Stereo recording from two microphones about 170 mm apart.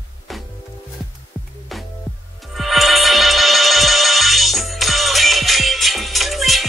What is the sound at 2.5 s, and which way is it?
Music, centre (ahead or behind).